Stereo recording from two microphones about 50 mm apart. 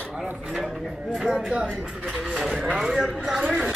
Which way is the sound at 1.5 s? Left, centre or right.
Centre.